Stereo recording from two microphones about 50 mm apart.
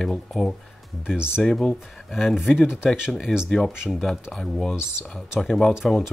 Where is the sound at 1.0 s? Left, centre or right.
Centre.